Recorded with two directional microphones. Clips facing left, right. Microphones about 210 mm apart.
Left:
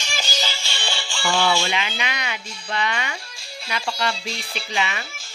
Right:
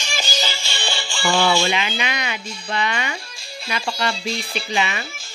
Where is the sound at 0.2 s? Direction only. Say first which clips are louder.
Right 2 dB; 5° right (ahead or behind).